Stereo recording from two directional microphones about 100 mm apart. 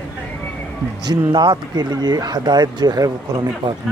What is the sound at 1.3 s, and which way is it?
Speech, 45° right (ahead or behind).